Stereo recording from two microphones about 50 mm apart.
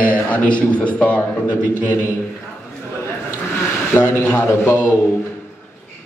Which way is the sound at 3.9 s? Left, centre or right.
Left.